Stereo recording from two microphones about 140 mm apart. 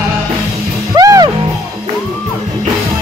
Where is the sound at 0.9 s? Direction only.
25° right (ahead or behind).